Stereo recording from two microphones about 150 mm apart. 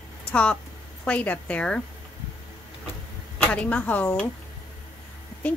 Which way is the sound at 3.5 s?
10° left (ahead or behind).